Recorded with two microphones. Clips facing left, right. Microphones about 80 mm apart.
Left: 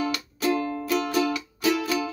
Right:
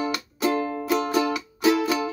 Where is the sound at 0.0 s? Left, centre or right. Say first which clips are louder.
Right 1 dB; right.